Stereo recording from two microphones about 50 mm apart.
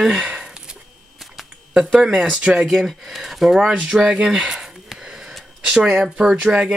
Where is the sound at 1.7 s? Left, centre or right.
Centre.